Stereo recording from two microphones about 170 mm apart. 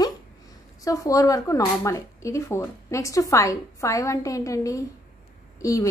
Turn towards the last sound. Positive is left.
turn(degrees=20)  # may be behind; listen again after turning